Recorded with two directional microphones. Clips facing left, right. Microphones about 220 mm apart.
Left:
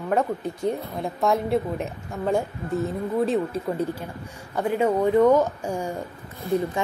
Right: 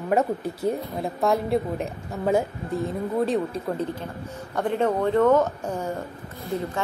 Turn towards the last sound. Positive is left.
turn(degrees=15)  # may be behind; listen again after turning